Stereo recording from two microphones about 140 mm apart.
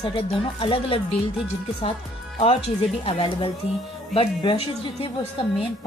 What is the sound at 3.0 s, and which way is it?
A woman's voice, 45° left (ahead or behind).